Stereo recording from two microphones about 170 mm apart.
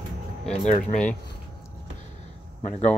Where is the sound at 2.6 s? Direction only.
40° left (ahead or behind).